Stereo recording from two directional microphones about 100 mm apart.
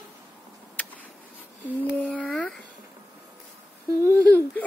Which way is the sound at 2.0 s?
15° left (ahead or behind).